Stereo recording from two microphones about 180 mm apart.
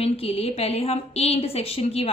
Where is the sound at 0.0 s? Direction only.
35° left (ahead or behind).